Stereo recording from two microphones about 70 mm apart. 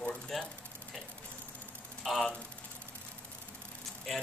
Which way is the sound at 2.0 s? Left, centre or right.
Centre.